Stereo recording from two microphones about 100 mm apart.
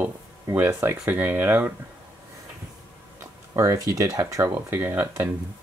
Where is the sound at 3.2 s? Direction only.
30° right (ahead or behind).